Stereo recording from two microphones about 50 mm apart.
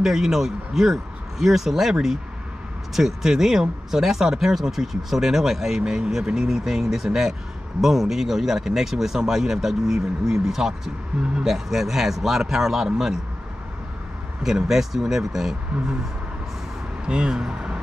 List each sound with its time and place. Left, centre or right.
0.0 s speech: centre
14.4 s speech: centre
17.0 s speech: centre